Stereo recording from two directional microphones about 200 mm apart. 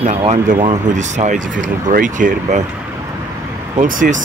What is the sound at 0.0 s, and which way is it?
Speech, 35° right (ahead or behind).